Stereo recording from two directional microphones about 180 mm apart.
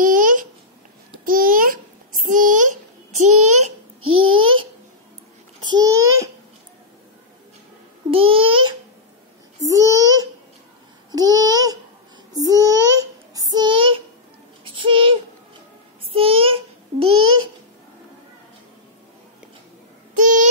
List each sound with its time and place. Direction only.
0.0 s babbling: 50° right (ahead or behind)
3.2 s child singing: 40° right (ahead or behind)
5.6 s babbling: 20° right (ahead or behind)
8.1 s babbling: 30° right (ahead or behind)
9.8 s a sound: 20° right (ahead or behind)
11.1 s babbling: 20° right (ahead or behind)
12.4 s child singing: 20° right (ahead or behind)
14.6 s babbling: 30° right (ahead or behind)
16.1 s child singing: 30° right (ahead or behind)
20.2 s a sound: 45° right (ahead or behind)